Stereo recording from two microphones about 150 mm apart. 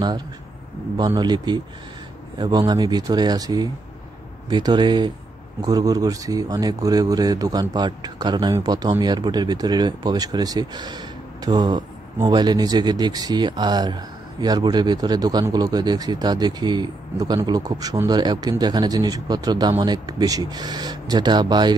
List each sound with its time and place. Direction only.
0.9 s speech: 30° right (ahead or behind)